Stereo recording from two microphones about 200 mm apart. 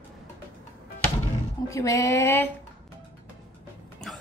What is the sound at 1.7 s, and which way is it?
Speech, 15° left (ahead or behind).